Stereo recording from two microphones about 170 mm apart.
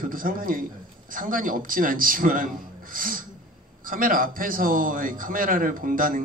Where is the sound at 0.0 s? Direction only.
55° right (ahead or behind).